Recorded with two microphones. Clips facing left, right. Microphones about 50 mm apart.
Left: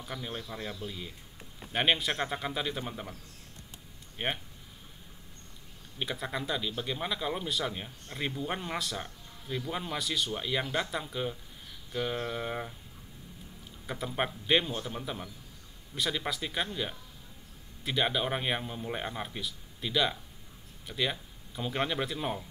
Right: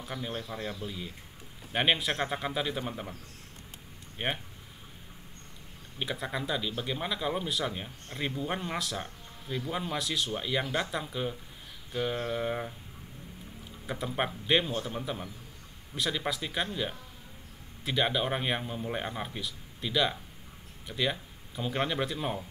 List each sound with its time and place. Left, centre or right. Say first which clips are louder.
0.0 s speech: right 2 dB; centre
4.2 s speech: right 1 dB; centre
5.9 s speech: right 1 dB; centre
13.8 s speech: right 1 dB; centre